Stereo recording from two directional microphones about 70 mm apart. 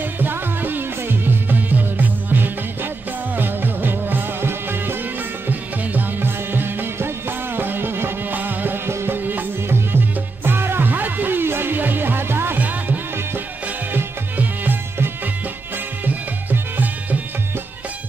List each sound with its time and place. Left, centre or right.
0.2 s music: right
16.1 s music: right